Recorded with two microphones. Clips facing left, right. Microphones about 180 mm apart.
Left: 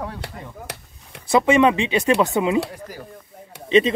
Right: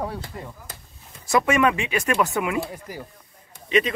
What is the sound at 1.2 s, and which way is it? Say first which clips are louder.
Speech: left 4 dB; 30° left (ahead or behind).